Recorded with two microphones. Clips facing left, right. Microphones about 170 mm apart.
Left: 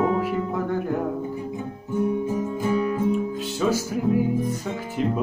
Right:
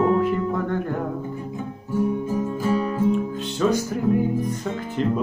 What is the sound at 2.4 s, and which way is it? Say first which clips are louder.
Music: right 1 dB; 20° left (ahead or behind).